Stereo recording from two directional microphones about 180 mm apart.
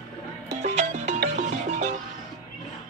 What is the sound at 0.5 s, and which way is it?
Music, 40° right (ahead or behind).